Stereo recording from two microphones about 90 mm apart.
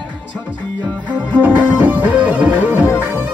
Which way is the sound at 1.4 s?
20° right (ahead or behind).